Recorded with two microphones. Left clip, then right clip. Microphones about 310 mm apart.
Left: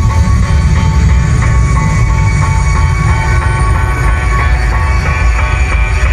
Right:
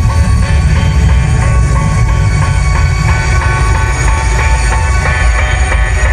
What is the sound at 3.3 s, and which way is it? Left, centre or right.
Music, right.